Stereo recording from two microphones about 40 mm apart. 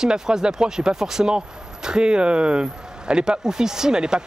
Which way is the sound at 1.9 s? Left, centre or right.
Right.